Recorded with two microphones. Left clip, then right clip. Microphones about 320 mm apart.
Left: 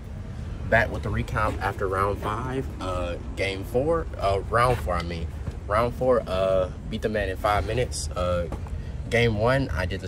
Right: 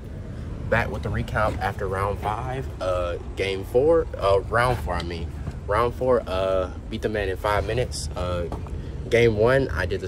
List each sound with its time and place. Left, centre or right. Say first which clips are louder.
0.7 s speech: left 2 dB; centre
1.6 s speech: even; right
2.2 s speech: right 1 dB; centre